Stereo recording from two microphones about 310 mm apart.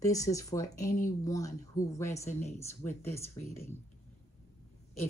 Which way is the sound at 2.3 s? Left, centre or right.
Left.